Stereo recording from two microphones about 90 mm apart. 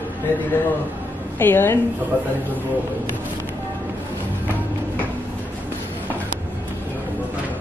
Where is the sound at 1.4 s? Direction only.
25° left (ahead or behind).